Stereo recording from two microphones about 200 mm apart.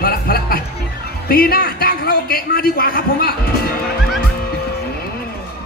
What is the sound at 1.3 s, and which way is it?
A man's voice, 50° left (ahead or behind).